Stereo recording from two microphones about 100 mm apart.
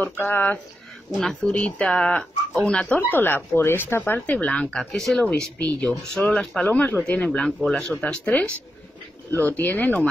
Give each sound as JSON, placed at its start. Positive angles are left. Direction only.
{"t": 0.0, "sound": "speech", "side_deg": 20}